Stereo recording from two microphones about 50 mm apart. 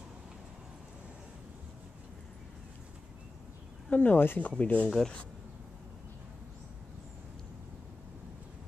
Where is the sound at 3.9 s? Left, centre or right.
Left.